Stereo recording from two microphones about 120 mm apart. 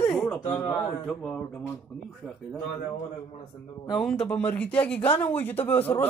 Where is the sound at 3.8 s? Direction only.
5° left (ahead or behind).